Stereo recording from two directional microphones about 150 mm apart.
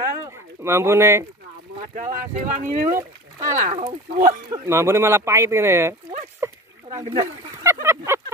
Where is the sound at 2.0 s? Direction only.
60° right (ahead or behind).